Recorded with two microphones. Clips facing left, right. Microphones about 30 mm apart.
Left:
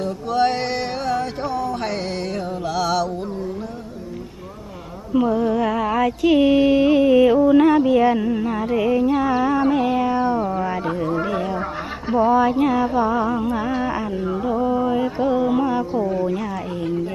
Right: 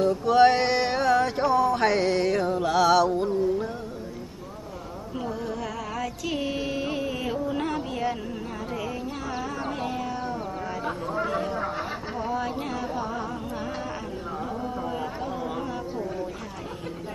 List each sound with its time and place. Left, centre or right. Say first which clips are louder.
0.5 s music: right 1 dB; right
2.4 s mantra: left 1 dB; right
5.1 s music: left 14 dB; left
8.2 s a sound: left 12 dB; left
9.7 s music: left 11 dB; left
11.1 s a sound: left 4 dB; left
12.3 s music: left 12 dB; left
14.4 s carnatic music: left 12 dB; left
15.0 s a sound: left 12 dB; left